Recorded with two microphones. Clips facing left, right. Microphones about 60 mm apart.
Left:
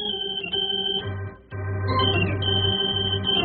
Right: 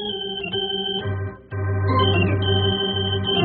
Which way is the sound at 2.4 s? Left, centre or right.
Centre.